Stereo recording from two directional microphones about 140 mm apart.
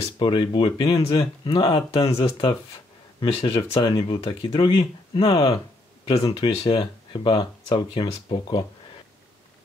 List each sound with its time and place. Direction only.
0.2 s speech: 35° left (ahead or behind)